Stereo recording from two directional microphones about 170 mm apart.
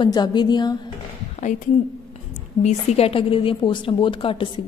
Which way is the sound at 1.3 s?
50° left (ahead or behind).